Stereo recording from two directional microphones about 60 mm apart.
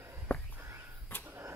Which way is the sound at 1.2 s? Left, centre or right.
Right.